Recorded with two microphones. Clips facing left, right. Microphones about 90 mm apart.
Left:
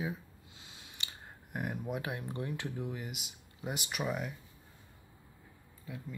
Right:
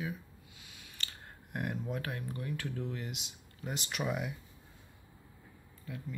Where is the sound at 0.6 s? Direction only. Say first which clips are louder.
Left 1 dB; 25° left (ahead or behind).